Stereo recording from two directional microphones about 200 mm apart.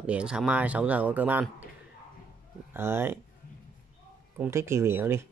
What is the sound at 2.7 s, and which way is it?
Speech, 10° right (ahead or behind).